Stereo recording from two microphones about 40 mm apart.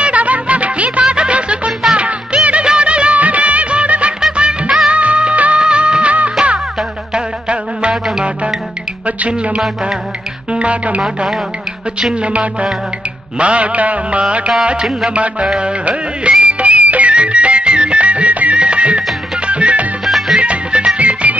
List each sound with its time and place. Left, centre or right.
0.0 s music: right
1.0 s music: right
3.2 s music of bollywood: right
6.4 s music: centre
7.2 s insect: right
7.9 s music: centre
10.5 s speech: right
12.0 s music: right
12.3 s music: right
14.6 s music: right
20.1 s music: centre
20.3 s music: right